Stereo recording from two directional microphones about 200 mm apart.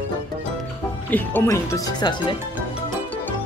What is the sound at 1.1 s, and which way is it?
Speech, 10° left (ahead or behind).